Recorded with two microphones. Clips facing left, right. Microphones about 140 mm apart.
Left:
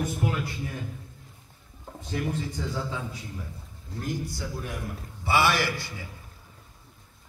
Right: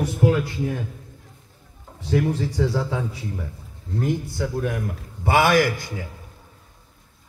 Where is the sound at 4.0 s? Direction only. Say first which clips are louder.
Right 8 dB; 60° right (ahead or behind).